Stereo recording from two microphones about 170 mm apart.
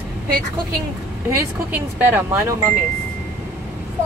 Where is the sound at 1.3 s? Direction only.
10° right (ahead or behind).